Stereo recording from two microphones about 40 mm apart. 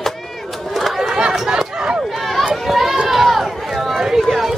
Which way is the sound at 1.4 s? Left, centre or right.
Centre.